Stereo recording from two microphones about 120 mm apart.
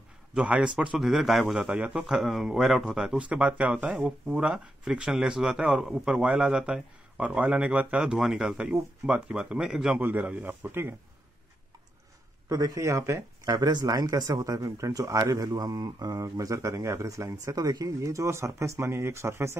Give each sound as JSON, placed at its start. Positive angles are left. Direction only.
{"t": 0.3, "sound": "a man's voice", "side_deg": -10}
{"t": 12.4, "sound": "speech", "side_deg": -30}